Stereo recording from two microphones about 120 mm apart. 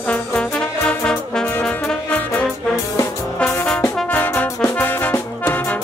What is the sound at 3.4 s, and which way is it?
Brass instrument, 15° left (ahead or behind).